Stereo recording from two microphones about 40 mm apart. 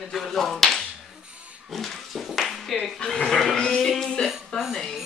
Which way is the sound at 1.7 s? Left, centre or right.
Centre.